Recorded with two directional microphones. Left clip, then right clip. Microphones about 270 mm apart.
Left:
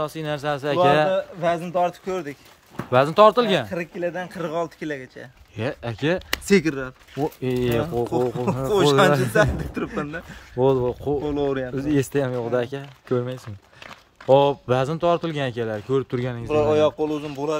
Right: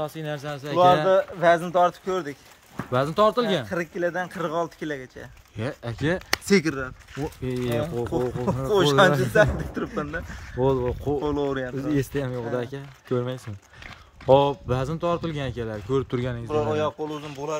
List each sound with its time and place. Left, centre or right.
0.0 s speech: centre
6.3 s speech: centre
16.4 s speech: left